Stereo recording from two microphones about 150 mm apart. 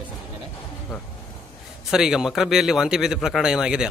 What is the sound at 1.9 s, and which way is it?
Speech, 5° right (ahead or behind).